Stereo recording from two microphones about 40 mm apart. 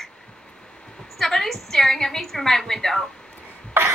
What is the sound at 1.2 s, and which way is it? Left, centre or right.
A woman's voice, centre.